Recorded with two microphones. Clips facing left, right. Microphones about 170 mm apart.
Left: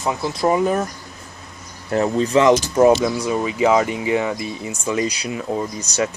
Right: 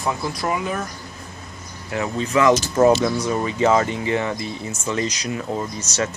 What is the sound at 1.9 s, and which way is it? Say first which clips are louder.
Speech: left 5 dB; 40° left (ahead or behind).